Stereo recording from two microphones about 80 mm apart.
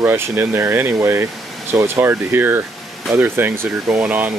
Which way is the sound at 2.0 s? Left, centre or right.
Right.